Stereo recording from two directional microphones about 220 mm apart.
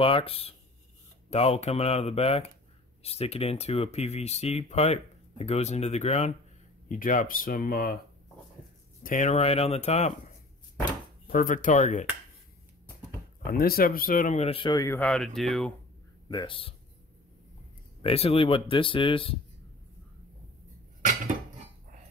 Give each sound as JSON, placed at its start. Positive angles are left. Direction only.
{"t": 0.0, "sound": "speech", "side_deg": 25}
{"t": 9.0, "sound": "speech", "side_deg": 35}
{"t": 11.2, "sound": "speech", "side_deg": 35}
{"t": 13.4, "sound": "speech", "side_deg": 45}
{"t": 16.3, "sound": "speech", "side_deg": 20}
{"t": 18.0, "sound": "speech", "side_deg": 25}